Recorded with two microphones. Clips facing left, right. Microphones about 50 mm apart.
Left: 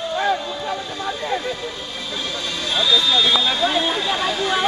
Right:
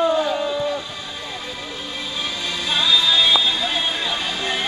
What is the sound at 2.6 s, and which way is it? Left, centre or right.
Music, centre.